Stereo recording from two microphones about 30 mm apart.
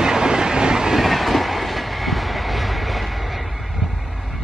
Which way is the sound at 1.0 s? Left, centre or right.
Centre.